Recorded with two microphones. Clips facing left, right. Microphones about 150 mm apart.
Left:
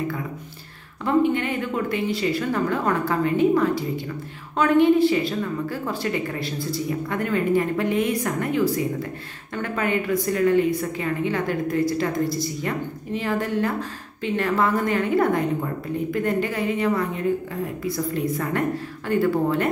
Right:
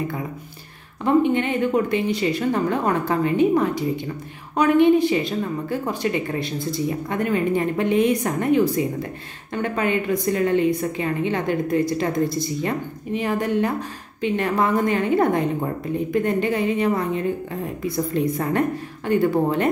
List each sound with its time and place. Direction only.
1.0 s a woman's voice: 20° right (ahead or behind)